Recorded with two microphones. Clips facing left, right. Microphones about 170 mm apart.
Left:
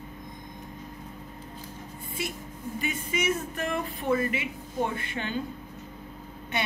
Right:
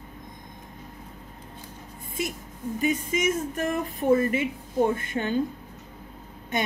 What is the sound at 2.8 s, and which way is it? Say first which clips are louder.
Speech: right 6 dB; 40° right (ahead or behind).